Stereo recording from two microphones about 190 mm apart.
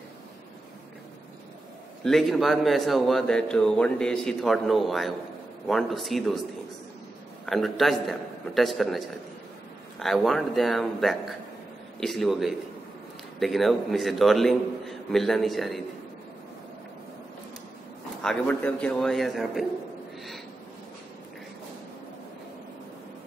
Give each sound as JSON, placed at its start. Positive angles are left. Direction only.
{"t": 2.0, "sound": "a man's voice", "side_deg": 0}
{"t": 7.4, "sound": "a man's voice", "side_deg": 0}
{"t": 18.2, "sound": "a man's voice", "side_deg": 5}